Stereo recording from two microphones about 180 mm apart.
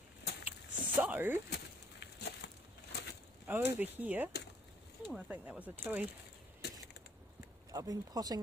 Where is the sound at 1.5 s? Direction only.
65° left (ahead or behind).